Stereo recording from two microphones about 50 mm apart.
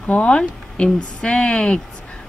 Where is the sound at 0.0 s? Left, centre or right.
Left.